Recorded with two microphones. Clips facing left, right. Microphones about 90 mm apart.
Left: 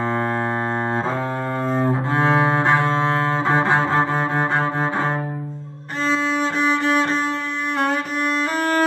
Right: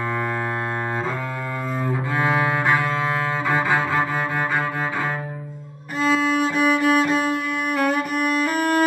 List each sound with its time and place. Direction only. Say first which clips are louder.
1.8 s cello: left 3 dB; 30° left (ahead or behind)
6.4 s music: right 1 dB; 35° left (ahead or behind)